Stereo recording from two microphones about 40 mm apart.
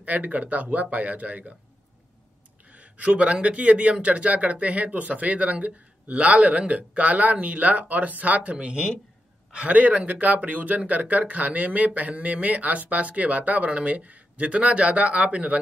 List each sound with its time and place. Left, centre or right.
0.0 s speech: right
2.7 s speech: right